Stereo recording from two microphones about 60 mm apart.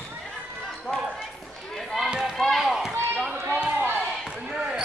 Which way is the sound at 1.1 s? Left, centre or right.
Centre.